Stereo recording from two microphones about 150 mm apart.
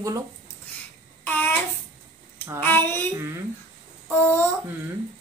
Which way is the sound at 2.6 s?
15° left (ahead or behind).